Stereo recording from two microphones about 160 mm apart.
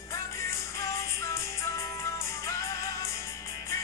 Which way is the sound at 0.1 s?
20° left (ahead or behind).